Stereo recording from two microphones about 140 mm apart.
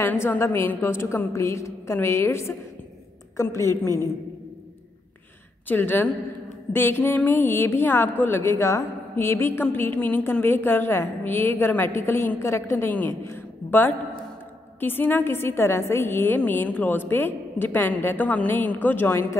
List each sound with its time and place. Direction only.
0.0 s a woman's voice: 15° left (ahead or behind)
5.7 s a woman's voice: 15° left (ahead or behind)